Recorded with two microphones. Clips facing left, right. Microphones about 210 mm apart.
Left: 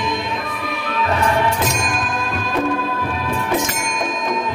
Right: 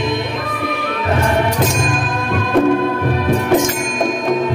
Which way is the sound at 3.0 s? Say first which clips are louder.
Right 7 dB; 65° right (ahead or behind).